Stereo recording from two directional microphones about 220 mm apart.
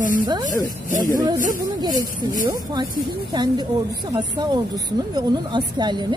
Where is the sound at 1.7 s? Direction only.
15° right (ahead or behind).